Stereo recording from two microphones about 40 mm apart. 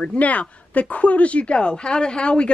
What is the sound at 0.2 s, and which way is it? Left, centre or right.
A woman's voice, left.